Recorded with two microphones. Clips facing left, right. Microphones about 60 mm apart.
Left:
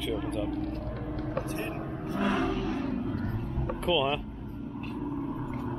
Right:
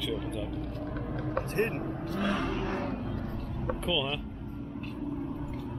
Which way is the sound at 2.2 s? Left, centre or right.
Centre.